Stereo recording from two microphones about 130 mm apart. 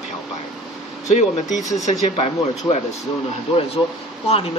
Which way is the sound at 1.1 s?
65° left (ahead or behind).